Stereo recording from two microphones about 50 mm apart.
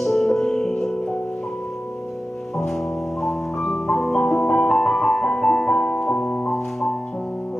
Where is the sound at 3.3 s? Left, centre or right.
Centre.